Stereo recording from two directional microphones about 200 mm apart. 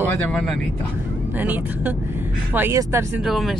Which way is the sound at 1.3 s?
10° right (ahead or behind).